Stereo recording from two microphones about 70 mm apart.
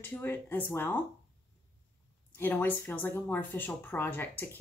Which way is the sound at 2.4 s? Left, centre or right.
Left.